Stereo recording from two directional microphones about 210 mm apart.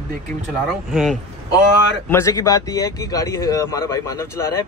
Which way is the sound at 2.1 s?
15° left (ahead or behind).